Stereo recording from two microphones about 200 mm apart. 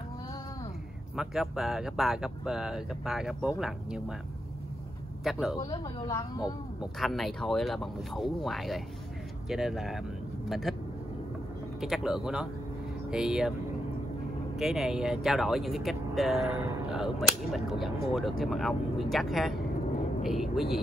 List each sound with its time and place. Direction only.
1.1 s speech: centre (ahead or behind)
5.2 s speech: centre (ahead or behind)
5.6 s speech: 20° left (ahead or behind)
6.8 s speech: centre (ahead or behind)
11.8 s speech: centre (ahead or behind)
14.6 s speech: centre (ahead or behind)